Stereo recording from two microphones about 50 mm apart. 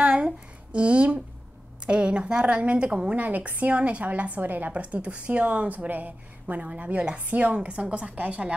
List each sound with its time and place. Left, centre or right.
0.0 s a sound: right
1.9 s a woman's voice: centre
3.2 s a woman's voice: right